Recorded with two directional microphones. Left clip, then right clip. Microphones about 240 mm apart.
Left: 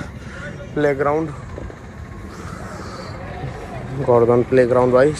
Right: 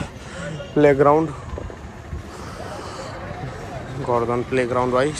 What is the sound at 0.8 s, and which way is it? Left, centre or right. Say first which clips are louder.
Speech: right 4 dB; right.